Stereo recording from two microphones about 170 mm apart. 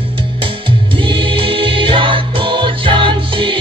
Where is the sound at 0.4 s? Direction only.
30° right (ahead or behind).